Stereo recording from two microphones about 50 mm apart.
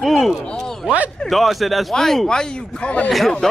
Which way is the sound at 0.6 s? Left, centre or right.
Centre.